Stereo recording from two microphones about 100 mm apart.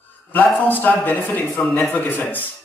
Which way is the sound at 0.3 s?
20° left (ahead or behind).